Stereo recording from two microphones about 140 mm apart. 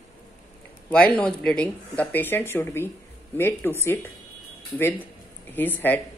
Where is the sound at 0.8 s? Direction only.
10° left (ahead or behind).